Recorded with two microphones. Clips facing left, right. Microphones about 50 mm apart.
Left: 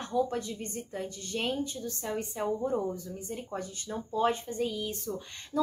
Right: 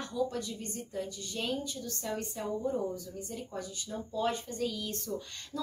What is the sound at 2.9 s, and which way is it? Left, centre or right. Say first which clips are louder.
A woman's voice: left 2 dB; left.